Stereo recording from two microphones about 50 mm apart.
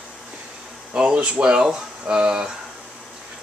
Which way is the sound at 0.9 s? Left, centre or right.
Right.